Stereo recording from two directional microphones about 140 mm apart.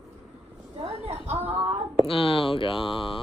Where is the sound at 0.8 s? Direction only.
50° right (ahead or behind).